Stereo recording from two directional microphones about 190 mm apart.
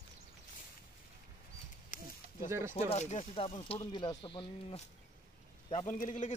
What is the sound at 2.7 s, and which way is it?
Speech, 35° left (ahead or behind).